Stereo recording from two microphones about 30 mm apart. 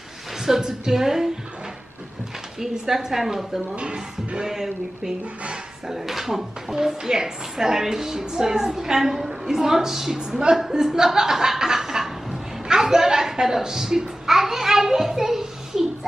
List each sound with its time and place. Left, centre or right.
0.4 s a woman's voice: centre
2.6 s a woman's voice: centre
3.7 s music: right
4.5 s a woman's voice: centre
12.6 s a sound: centre